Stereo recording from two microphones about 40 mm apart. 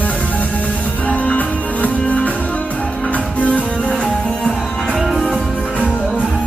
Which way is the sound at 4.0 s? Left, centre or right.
Centre.